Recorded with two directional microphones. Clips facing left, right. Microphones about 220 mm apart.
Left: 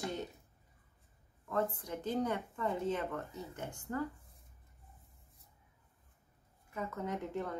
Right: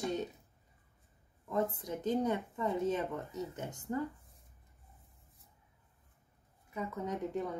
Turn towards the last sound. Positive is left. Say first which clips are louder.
# right 2 dB
turn(degrees=-15)  # may be behind; listen again after turning